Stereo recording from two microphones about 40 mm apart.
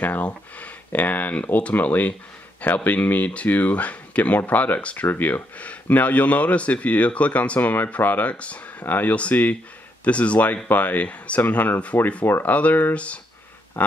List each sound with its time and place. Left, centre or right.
0.2 s speech: left
4.9 s speech: left
5.2 s speech: left
8.0 s speech: left
8.3 s speech: left
8.8 s speech: left
9.1 s speech: left
12.9 s speech: left
13.8 s a sound: left